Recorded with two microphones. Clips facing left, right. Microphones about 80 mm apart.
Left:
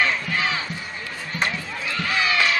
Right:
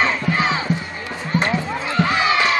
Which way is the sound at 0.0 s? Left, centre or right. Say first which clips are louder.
Right 4 dB; right.